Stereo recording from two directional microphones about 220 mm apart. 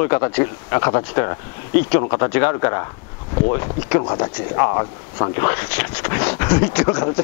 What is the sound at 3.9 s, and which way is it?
Speech, 20° left (ahead or behind).